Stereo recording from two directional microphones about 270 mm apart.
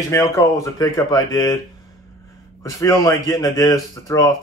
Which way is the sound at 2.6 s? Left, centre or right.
Centre.